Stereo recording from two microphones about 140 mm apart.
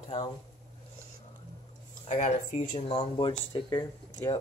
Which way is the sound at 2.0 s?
60° left (ahead or behind).